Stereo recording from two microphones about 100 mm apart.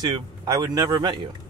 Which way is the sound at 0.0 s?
45° right (ahead or behind).